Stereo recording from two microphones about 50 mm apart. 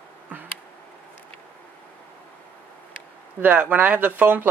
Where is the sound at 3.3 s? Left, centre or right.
Right.